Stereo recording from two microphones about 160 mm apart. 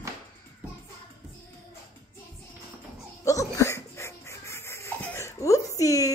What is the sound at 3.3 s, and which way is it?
Laughter, 20° left (ahead or behind).